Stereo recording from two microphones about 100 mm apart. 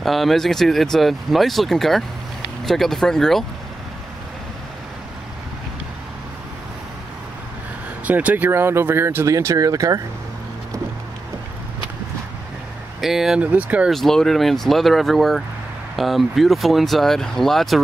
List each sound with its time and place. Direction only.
0.0 s speech: centre (ahead or behind)
8.1 s speech: 15° right (ahead or behind); by 10.0 s 35° right (ahead or behind)
13.0 s speech: 5° right (ahead or behind)
13.4 s speech: 15° right (ahead or behind)
13.8 s speech: 5° left (ahead or behind)